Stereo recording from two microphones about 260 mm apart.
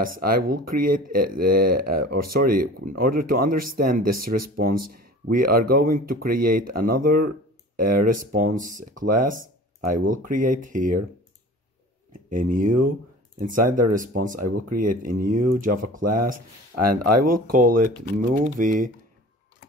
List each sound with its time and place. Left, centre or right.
0.0 s speech: right
12.3 s speech: right
16.7 s speech: right
17.5 s speech: right